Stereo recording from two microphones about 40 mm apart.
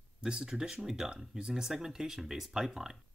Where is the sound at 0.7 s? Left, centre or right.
Centre.